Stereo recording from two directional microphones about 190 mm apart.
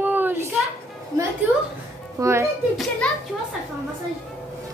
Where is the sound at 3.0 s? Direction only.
5° left (ahead or behind).